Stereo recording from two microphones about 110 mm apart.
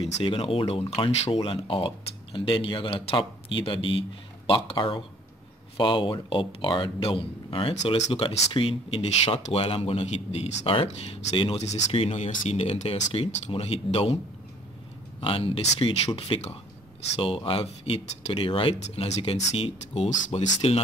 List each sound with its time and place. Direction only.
0.0 s speech: 55° left (ahead or behind)
11.3 s speech: 55° left (ahead or behind)
11.6 s speech: 75° left (ahead or behind)
15.1 s speech: 60° left (ahead or behind)
16.3 s speech: 50° left (ahead or behind)
18.9 s speech: 85° left; by 20.8 s 70° left (ahead or behind)